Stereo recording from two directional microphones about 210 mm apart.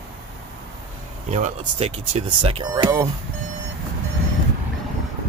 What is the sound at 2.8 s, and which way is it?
Speech, 15° right (ahead or behind).